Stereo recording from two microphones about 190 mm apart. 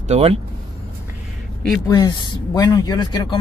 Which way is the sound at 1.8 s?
20° left (ahead or behind).